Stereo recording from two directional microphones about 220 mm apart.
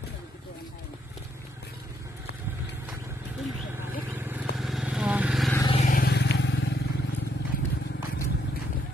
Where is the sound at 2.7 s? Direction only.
10° right (ahead or behind).